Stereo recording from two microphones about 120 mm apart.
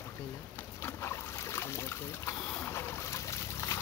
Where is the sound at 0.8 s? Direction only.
20° left (ahead or behind).